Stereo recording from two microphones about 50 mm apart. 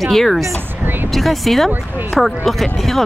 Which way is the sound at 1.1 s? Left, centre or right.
Centre.